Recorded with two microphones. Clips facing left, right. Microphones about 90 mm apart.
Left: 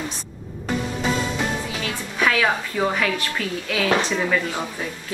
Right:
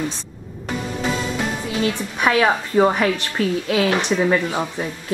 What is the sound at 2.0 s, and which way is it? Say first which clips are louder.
A woman's voice: right 1 dB; 20° right (ahead or behind).